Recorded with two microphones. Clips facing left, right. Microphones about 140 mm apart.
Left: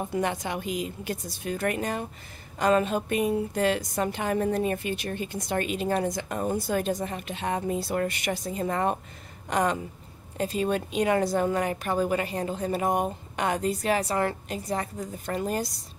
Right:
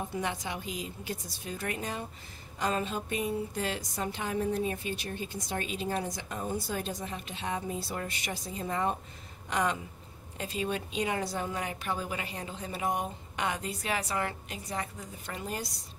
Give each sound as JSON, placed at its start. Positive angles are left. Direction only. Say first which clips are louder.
{"t": 0.1, "sound": "a woman's voice", "louder": "left 6 dB", "side_deg": 55}
{"t": 9.5, "sound": "speech", "louder": "left 5 dB", "side_deg": 45}